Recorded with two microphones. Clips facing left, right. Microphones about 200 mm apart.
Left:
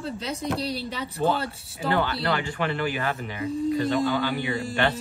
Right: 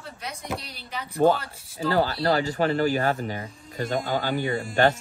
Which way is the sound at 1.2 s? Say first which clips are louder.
Right 4 dB; 45° right (ahead or behind).